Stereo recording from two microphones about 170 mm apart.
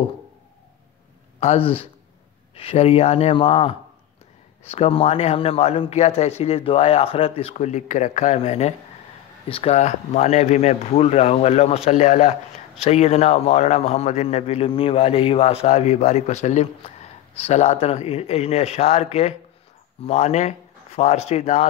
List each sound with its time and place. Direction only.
1.4 s a man's voice: 35° left (ahead or behind)